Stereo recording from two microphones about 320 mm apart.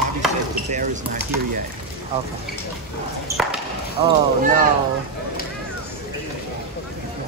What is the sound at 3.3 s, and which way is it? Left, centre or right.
Speech, centre.